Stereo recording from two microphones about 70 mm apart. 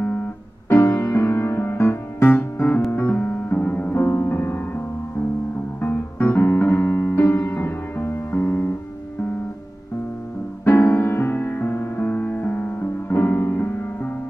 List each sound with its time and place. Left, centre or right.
0.7 s music: left
2.9 s piano: left
3.9 s music: left
5.8 s piano: left
10.6 s music: left